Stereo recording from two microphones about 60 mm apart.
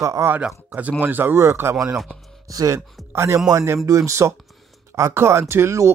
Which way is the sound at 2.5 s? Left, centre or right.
Right.